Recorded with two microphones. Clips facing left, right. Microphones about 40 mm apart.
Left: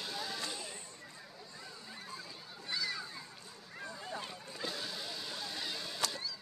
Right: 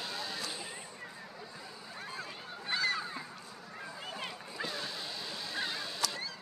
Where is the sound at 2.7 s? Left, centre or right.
Right.